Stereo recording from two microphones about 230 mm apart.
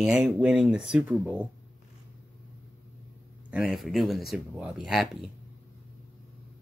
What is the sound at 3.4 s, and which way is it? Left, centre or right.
Speech, centre.